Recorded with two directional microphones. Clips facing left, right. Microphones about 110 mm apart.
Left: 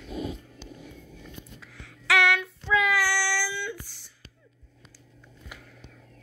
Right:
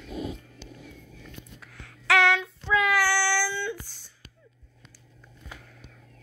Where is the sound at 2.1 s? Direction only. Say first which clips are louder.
Right 2 dB; 20° right (ahead or behind).